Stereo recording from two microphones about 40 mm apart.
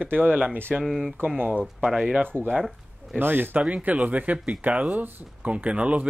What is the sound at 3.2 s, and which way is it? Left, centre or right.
Speech, right.